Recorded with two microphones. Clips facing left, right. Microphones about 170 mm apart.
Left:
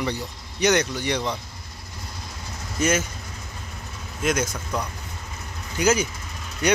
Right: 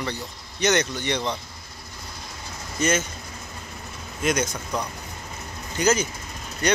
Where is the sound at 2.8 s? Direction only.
10° left (ahead or behind).